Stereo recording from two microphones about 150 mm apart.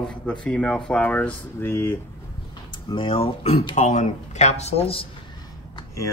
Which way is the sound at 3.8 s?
50° left (ahead or behind).